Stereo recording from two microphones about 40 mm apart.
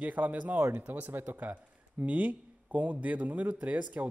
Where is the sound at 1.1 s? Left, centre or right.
Right.